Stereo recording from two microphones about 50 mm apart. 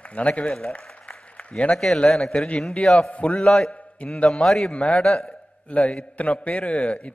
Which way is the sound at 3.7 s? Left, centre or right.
Left.